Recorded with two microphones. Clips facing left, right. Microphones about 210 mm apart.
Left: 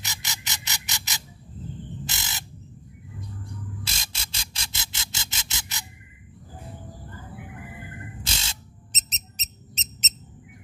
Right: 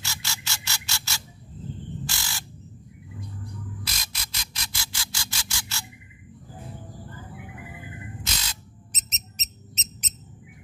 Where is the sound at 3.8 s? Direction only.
25° left (ahead or behind).